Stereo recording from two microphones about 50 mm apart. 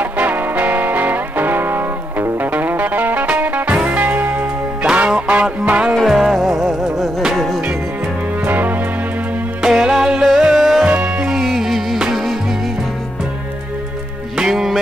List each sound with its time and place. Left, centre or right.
0.0 s music: right
4.9 s music: right
5.9 s music: centre
8.5 s music: right
9.6 s music: centre
10.9 s music: right
11.2 s music: centre
14.3 s music: centre